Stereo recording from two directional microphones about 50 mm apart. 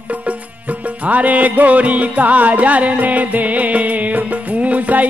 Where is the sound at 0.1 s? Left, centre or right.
Right.